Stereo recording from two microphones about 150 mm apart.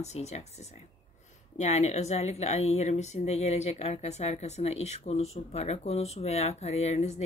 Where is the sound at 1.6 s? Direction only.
45° left (ahead or behind).